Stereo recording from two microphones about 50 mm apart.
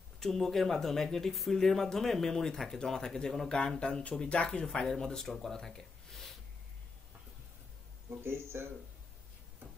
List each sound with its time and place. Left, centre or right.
0.2 s speech: centre
3.8 s speech: left
5.4 s a sound: centre
8.2 s speech: right